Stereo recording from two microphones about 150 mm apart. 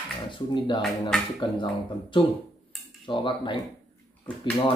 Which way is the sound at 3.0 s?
35° left (ahead or behind).